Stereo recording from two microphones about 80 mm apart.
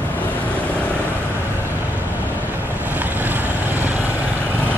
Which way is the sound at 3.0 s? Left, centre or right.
Right.